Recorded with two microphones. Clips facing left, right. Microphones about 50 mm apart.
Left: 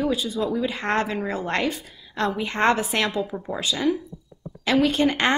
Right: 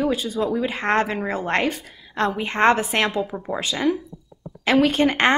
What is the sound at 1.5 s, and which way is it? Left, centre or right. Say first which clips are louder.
A woman's voice: right 3 dB; right.